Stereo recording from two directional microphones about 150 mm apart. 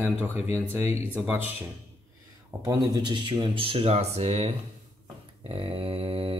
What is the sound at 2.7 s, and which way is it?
Speech, 30° right (ahead or behind).